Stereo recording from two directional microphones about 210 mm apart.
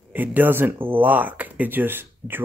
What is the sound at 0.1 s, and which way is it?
Speech, 10° right (ahead or behind).